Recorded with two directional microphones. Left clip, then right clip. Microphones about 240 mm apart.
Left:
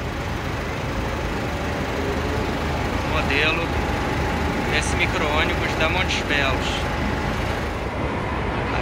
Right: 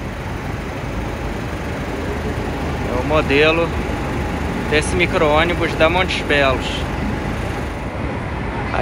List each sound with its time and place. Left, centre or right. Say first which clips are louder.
3.2 s speech: right 7 dB; centre
4.7 s speech: right 8 dB; centre